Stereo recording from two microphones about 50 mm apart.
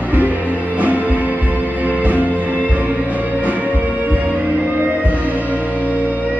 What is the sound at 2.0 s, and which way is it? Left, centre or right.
Music, right.